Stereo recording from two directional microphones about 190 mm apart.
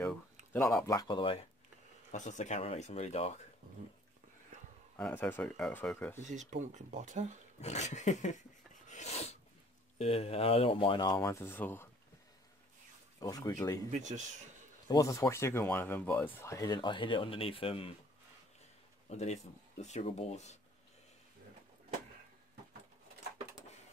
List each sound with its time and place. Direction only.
0.8 s speech: 20° left (ahead or behind)
2.1 s speech: 40° left (ahead or behind)
4.9 s speech: 10° left (ahead or behind)
6.2 s speech: 40° right (ahead or behind)
7.6 s speech: 35° left (ahead or behind)
8.8 s sneeze: 35° left (ahead or behind)
9.9 s speech: 30° left (ahead or behind); by 11.9 s 10° left (ahead or behind)
13.2 s speech: 15° left (ahead or behind)
13.8 s speech: 40° right (ahead or behind)
14.9 s speech: 15° left (ahead or behind)
19.0 s speech: 35° left (ahead or behind)